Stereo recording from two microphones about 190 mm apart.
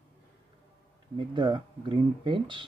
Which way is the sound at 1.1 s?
25° right (ahead or behind).